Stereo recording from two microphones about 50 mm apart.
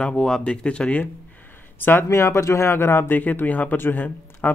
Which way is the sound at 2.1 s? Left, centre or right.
Left.